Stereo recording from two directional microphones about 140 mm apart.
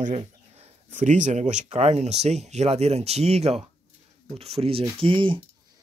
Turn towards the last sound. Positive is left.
turn(degrees=-35)  # may be behind; listen again after turning